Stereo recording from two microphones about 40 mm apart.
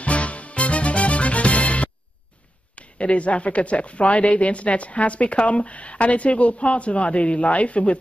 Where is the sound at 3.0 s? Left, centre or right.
Left.